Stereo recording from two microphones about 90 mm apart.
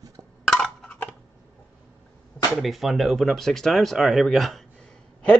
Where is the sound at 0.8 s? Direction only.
15° left (ahead or behind).